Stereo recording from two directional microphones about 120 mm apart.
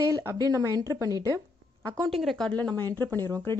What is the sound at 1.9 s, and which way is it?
Speech, 50° right (ahead or behind).